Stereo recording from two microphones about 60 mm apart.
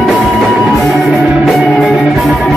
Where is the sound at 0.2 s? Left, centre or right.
Centre.